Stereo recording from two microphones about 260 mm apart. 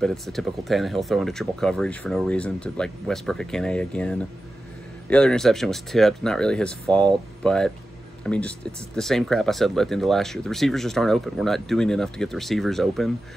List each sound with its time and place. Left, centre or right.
0.0 s speech: centre